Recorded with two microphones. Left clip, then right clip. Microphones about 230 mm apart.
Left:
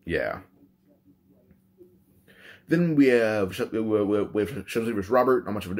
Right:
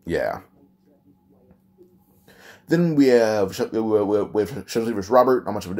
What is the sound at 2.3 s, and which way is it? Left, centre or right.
Speech, centre.